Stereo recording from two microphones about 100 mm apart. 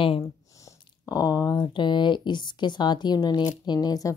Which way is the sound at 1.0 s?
40° left (ahead or behind).